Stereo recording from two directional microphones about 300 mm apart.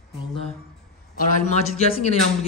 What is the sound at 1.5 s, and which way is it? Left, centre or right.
Speech, left.